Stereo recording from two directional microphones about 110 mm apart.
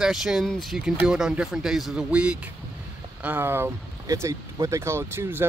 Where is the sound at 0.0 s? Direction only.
5° right (ahead or behind).